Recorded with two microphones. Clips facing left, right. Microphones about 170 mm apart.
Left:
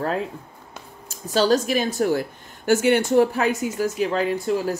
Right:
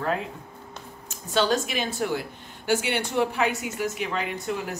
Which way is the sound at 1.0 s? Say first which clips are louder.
Left 4 dB; 35° left (ahead or behind).